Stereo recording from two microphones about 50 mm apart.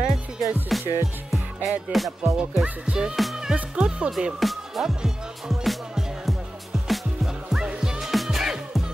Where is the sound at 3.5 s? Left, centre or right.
Right.